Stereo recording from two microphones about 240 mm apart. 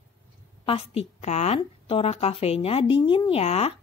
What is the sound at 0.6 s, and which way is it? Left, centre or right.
A woman's voice, left.